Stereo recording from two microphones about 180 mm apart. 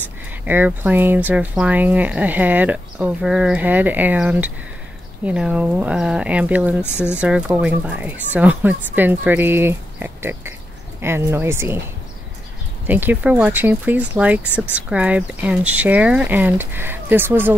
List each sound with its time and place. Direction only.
0.5 s speech: 10° right (ahead or behind)
12.8 s speech: 10° right (ahead or behind)